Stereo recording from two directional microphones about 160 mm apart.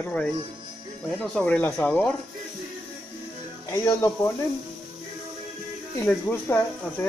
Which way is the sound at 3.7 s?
20° left (ahead or behind).